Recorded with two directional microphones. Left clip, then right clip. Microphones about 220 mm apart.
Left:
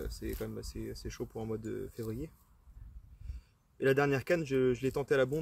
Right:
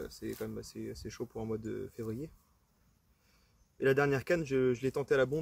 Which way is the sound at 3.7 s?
Centre (ahead or behind).